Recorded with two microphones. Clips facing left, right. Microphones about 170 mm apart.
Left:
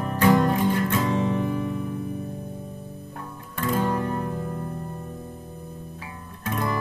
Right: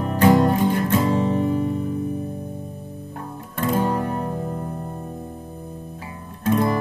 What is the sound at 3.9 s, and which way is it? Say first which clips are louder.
Music: right 2 dB; 30° right (ahead or behind).